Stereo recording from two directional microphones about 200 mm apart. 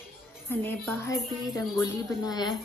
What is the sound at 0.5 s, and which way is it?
Speech, 10° left (ahead or behind).